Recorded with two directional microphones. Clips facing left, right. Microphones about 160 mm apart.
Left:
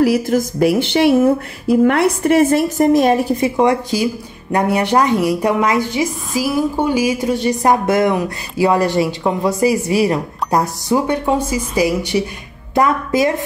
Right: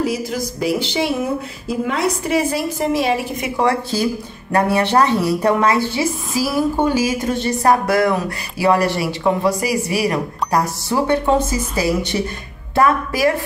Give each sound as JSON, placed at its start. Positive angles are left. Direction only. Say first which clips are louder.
{"t": 0.0, "sound": "speech", "louder": "left 7 dB", "side_deg": 60}
{"t": 3.3, "sound": "a woman's voice", "louder": "left 6 dB", "side_deg": 30}
{"t": 3.6, "sound": "a woman's voice", "louder": "right 1 dB", "side_deg": 15}